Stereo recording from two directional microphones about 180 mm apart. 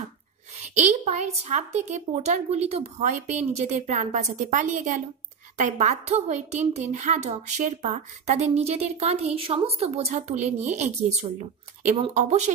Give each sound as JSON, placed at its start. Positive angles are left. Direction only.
{"t": 0.6, "sound": "a woman's voice", "side_deg": -40}